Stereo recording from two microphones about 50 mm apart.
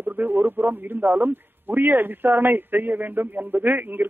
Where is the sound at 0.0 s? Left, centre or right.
Right.